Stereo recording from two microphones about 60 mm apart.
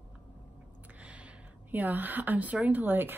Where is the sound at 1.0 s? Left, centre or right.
Right.